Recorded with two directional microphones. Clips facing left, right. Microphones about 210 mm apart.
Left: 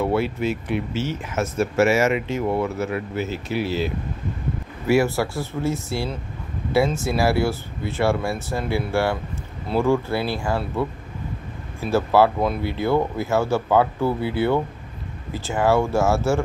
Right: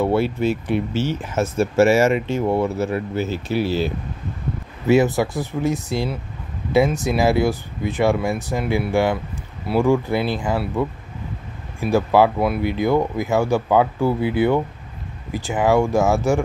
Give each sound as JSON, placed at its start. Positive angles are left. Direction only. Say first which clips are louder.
{"t": 0.0, "sound": "speech", "louder": "right 3 dB", "side_deg": -30}
{"t": 4.8, "sound": "speech", "louder": "right 3 dB", "side_deg": -20}
{"t": 11.8, "sound": "speech", "louder": "right 2 dB", "side_deg": -15}